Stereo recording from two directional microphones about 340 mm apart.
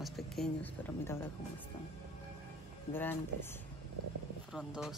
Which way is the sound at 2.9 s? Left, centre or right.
Centre.